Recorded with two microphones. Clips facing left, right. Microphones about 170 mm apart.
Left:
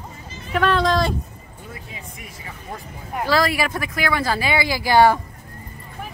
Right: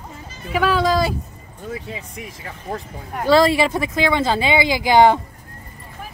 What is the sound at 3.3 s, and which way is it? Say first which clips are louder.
Speech: right 6 dB; 25° right (ahead or behind).